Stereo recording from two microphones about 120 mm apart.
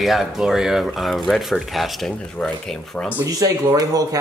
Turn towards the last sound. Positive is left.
turn(degrees=-30)  # may be behind; listen again after turning